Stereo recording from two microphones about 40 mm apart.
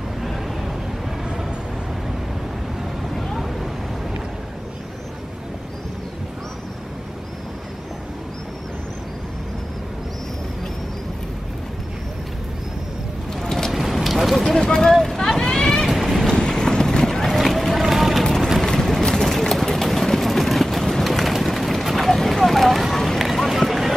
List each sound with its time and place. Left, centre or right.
0.2 s vehicle: centre
3.0 s vehicle: centre
13.3 s vehicle: centre
13.7 s vehicle: centre
14.7 s a sound: centre
15.0 s vehicle: centre
15.9 s a sound: centre
16.3 s boat: left
17.3 s a sound: centre
18.2 s vehicle: centre
21.0 s a sound: centre
23.1 s run: centre